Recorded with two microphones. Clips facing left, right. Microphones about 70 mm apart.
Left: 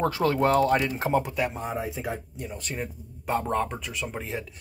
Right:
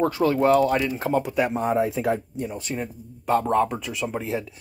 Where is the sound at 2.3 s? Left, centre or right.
Right.